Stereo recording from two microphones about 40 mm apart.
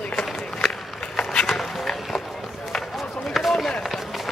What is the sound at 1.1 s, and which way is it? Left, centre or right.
Walk, left.